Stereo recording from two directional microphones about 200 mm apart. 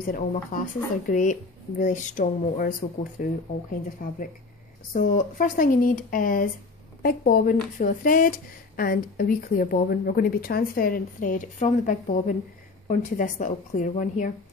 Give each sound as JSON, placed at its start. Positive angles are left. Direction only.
{"t": 0.0, "sound": "speech", "side_deg": 45}
{"t": 4.9, "sound": "speech", "side_deg": 40}